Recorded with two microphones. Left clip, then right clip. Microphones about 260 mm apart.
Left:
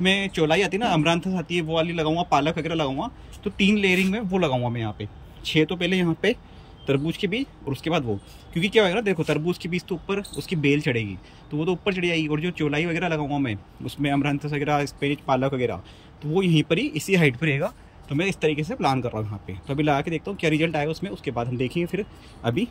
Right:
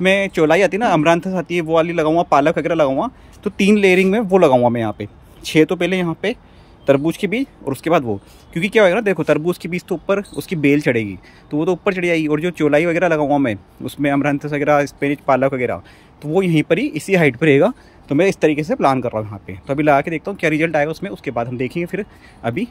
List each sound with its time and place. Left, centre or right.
0.0 s speech: centre